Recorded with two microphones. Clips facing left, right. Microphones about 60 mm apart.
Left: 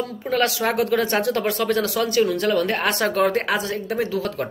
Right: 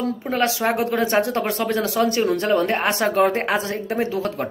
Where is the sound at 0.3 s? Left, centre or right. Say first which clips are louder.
Even; right.